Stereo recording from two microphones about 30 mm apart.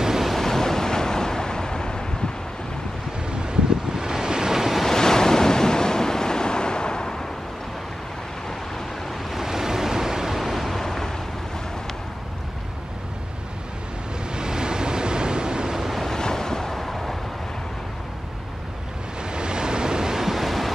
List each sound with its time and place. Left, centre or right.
0.4 s waves: centre
3.3 s waves: right
4.8 s waves: centre
9.4 s waves: centre
10.4 s vehicle: centre
14.3 s waves: right
16.2 s waves: left
19.3 s waves: right
20.2 s waves: centre